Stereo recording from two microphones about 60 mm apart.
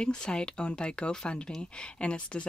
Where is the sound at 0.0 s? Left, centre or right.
Centre.